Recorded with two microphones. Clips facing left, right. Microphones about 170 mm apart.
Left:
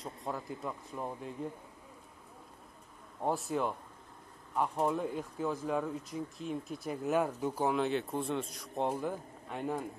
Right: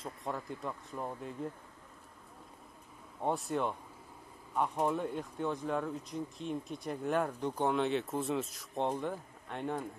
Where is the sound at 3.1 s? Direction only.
Centre (ahead or behind).